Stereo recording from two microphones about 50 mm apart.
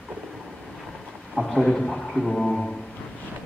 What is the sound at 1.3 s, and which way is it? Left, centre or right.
A man's voice, centre.